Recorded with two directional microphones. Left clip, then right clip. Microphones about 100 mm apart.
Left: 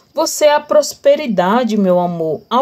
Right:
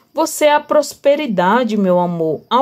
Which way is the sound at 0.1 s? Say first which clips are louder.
Left 1 dB; 5° right (ahead or behind).